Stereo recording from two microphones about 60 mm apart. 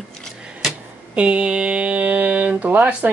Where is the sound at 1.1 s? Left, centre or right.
Centre.